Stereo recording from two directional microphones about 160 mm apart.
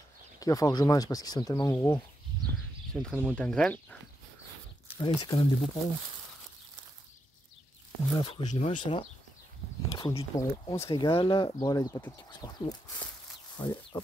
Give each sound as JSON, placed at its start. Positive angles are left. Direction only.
{"t": 0.4, "sound": "speech", "side_deg": 20}
{"t": 2.9, "sound": "speech", "side_deg": 5}
{"t": 4.9, "sound": "speech", "side_deg": 30}
{"t": 8.2, "sound": "speech", "side_deg": 25}
{"t": 8.5, "sound": "speech", "side_deg": 45}
{"t": 10.3, "sound": "speech", "side_deg": 20}